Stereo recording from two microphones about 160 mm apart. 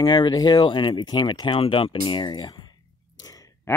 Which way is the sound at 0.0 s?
25° left (ahead or behind).